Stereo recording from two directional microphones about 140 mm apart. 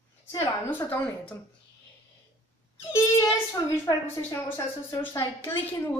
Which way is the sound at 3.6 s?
30° left (ahead or behind).